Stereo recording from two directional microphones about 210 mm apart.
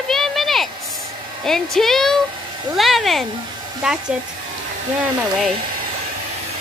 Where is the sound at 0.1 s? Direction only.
Centre (ahead or behind).